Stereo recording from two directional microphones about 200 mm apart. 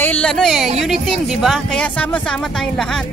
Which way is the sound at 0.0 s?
5° left (ahead or behind).